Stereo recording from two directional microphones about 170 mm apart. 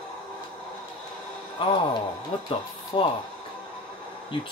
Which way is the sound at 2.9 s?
30° left (ahead or behind).